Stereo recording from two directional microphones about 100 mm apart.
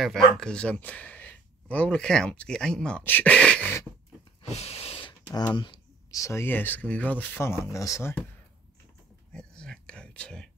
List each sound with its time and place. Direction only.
0.0 s speech: 5° left (ahead or behind)
3.0 s speech: 20° left (ahead or behind)
4.4 s a sound: 90° left; by 5.1 s 70° left (ahead or behind)
5.5 s speech: 50° left (ahead or behind)
6.1 s speech: 30° left (ahead or behind)
9.3 s a sound: 10° left (ahead or behind)